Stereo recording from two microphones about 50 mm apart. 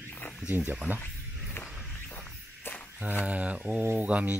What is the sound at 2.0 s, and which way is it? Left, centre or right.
Music, left.